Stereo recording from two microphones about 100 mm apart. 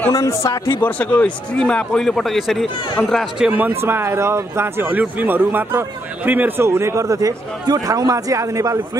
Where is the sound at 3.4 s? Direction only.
15° right (ahead or behind).